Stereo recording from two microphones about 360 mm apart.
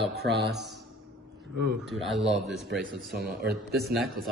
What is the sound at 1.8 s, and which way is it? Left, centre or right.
A man's voice, centre.